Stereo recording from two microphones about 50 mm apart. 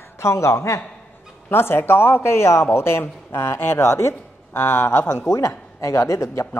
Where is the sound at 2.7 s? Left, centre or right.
Left.